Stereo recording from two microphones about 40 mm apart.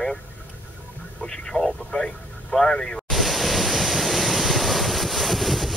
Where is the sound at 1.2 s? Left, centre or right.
Centre.